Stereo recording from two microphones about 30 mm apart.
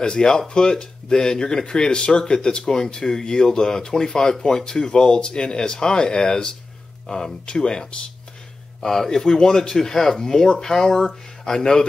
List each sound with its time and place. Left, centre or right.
0.0 s speech: left
8.8 s speech: centre